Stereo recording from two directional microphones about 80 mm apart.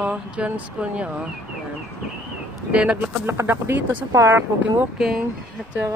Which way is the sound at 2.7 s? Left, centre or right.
Centre.